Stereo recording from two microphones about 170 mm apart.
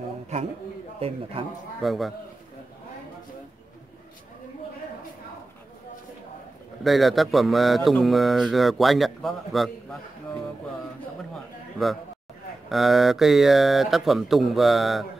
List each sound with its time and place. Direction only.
0.9 s a man's voice: 35° right (ahead or behind)
1.8 s speech: centre (ahead or behind)
6.8 s speech: centre (ahead or behind)
12.6 s speech: centre (ahead or behind)